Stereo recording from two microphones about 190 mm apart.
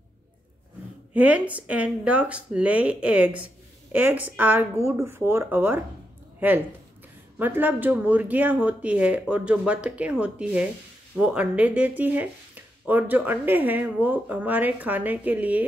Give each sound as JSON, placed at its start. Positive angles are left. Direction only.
{"t": 1.1, "sound": "speech", "side_deg": -10}
{"t": 7.3, "sound": "speech", "side_deg": -10}